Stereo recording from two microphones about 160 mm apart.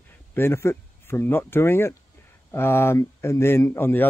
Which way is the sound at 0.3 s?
15° left (ahead or behind).